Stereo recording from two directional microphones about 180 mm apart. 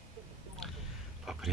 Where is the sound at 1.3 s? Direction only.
Centre (ahead or behind).